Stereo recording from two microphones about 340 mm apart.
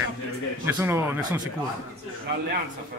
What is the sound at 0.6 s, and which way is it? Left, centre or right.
Speech, centre.